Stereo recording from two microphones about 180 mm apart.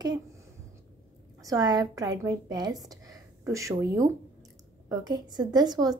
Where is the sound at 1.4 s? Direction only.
20° right (ahead or behind).